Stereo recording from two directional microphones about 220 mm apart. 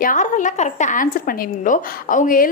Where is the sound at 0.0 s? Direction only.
35° left (ahead or behind).